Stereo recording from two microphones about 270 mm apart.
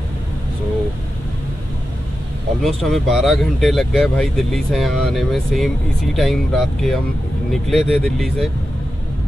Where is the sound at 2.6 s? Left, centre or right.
Centre.